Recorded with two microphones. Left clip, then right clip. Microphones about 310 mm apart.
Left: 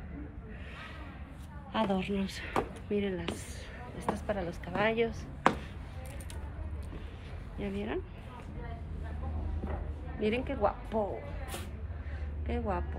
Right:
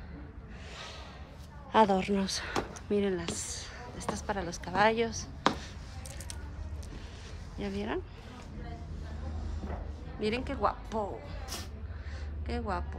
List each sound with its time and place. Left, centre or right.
1.7 s speech: centre
7.5 s speech: centre
10.2 s speech: centre
12.4 s speech: centre